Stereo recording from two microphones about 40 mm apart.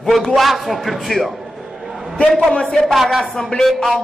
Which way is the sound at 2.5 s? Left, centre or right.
Left.